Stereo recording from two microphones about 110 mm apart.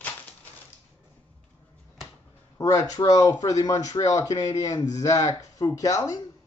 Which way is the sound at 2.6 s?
30° left (ahead or behind).